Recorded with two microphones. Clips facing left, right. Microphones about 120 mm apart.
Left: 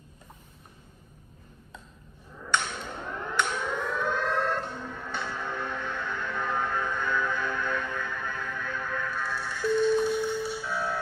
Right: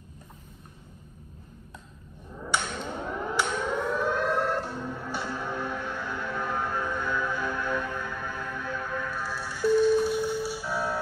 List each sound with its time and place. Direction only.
3.0 s civil defense siren: 10° right (ahead or behind)